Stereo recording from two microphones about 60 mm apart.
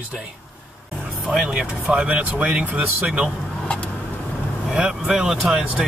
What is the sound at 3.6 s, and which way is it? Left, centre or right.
Vehicle, centre.